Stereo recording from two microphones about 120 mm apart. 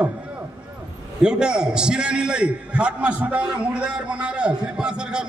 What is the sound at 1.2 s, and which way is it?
A man's voice, 5° right (ahead or behind).